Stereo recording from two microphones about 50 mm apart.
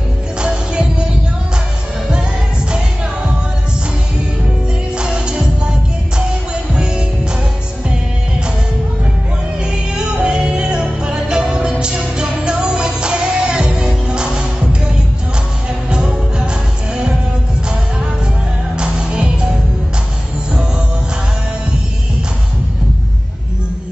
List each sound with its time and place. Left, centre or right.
0.4 s music: right
4.9 s music: centre
9.7 s music: centre
12.7 s music: centre
14.1 s music: centre
15.9 s music: centre
18.8 s music: centre